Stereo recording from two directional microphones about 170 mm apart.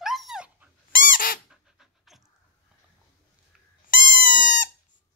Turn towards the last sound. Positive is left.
turn(degrees=50)  # may be behind; listen again after turning